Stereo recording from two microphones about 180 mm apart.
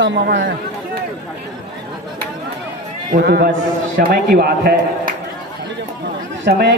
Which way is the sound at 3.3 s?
60° right (ahead or behind).